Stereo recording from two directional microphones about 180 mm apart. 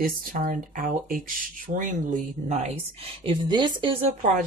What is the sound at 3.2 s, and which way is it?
Speech, 25° right (ahead or behind).